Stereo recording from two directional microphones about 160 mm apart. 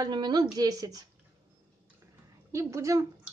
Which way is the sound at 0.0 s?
25° right (ahead or behind).